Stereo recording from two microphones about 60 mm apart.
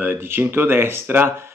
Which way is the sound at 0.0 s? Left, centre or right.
Right.